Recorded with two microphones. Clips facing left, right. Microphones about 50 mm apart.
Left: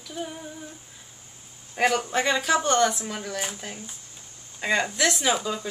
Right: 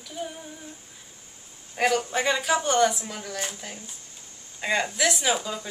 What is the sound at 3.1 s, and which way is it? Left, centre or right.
Speech, centre.